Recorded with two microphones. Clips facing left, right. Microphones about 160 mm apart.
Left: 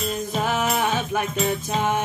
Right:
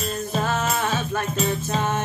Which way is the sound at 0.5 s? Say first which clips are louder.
Left 3 dB; 15° left (ahead or behind).